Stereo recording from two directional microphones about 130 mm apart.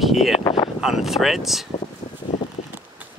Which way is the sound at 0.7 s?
Centre (ahead or behind).